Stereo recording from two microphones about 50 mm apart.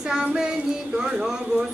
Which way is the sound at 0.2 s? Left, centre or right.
Centre.